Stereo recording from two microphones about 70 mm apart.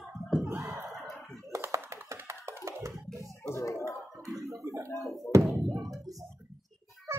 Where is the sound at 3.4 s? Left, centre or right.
Left.